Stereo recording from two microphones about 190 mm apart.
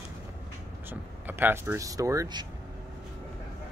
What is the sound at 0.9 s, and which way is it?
Speech, 10° right (ahead or behind).